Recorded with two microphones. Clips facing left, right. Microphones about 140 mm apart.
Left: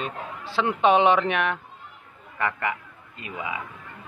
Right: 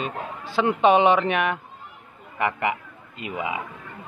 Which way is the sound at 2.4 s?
20° right (ahead or behind).